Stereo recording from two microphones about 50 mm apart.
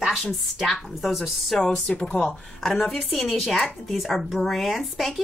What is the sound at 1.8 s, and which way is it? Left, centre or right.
Speech, centre.